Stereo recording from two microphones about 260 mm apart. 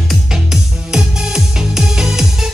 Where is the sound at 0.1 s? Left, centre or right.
Centre.